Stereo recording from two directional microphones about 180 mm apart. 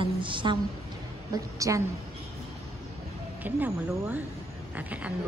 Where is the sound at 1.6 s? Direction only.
20° right (ahead or behind).